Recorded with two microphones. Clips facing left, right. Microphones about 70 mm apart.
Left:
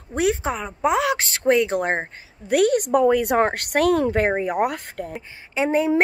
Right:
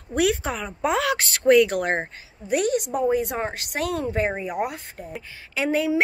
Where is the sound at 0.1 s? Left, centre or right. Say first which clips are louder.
Left 1 dB; left.